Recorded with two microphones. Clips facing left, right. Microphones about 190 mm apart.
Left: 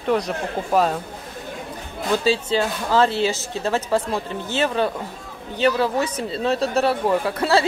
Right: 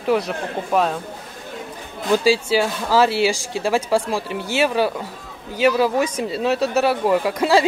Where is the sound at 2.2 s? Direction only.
10° right (ahead or behind).